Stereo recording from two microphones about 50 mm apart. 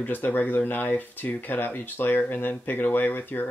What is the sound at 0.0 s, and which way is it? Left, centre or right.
Speech, left.